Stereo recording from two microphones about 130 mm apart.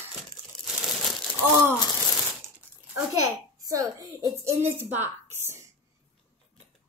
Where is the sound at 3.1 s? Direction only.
25° right (ahead or behind).